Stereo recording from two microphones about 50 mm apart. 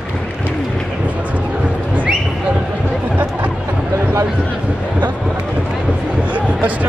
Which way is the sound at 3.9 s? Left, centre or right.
Right.